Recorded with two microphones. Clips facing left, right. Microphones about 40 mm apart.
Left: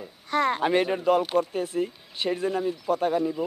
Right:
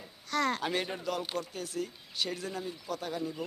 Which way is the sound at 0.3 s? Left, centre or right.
Left.